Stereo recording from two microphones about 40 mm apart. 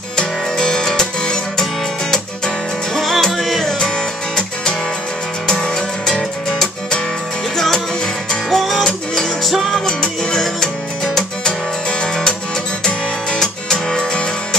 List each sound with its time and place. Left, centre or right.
0.2 s music: centre
3.1 s music: centre
5.5 s music: centre
9.4 s music: centre
9.8 s music: centre
13.4 s music: centre